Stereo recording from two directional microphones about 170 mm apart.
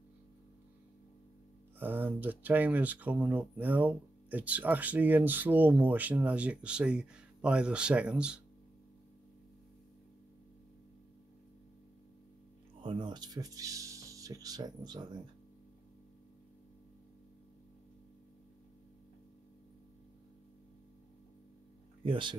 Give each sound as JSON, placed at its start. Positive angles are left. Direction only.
{"t": 1.8, "sound": "speech", "side_deg": -10}
{"t": 12.8, "sound": "speech", "side_deg": -25}
{"t": 22.0, "sound": "speech", "side_deg": -30}